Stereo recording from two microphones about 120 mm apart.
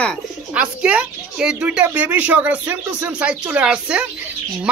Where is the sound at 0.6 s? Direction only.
10° right (ahead or behind).